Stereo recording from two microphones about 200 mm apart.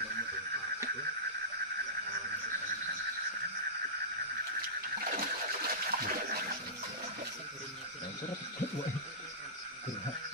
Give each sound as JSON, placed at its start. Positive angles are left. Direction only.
{"t": 5.1, "sound": "toilet flush", "side_deg": -50}